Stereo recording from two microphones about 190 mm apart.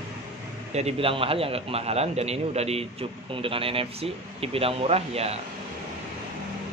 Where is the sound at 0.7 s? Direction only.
30° right (ahead or behind).